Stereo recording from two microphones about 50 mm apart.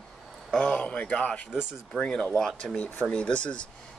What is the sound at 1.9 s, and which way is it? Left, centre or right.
Speech, centre.